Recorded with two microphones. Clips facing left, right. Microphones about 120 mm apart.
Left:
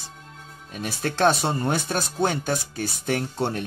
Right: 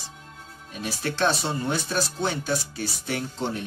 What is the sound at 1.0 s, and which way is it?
Speech, 50° left (ahead or behind).